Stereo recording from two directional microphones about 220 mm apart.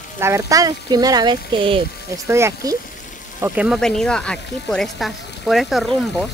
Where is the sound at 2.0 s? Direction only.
10° right (ahead or behind).